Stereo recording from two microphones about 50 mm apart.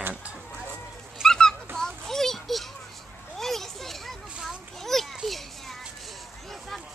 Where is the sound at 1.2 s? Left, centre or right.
Centre.